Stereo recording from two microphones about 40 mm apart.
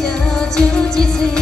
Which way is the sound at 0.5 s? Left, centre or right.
Centre.